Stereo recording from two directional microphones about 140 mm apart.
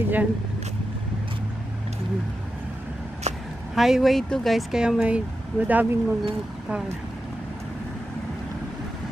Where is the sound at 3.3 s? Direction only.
55° right (ahead or behind).